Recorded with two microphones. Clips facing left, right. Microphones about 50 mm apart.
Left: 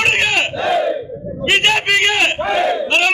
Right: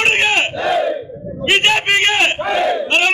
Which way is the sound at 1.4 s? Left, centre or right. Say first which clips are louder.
Even; centre.